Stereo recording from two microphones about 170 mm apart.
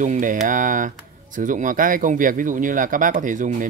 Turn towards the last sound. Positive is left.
turn(degrees=-50)  # may be behind; listen again after turning